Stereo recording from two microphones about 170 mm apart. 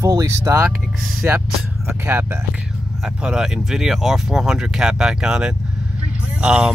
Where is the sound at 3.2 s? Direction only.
5° right (ahead or behind).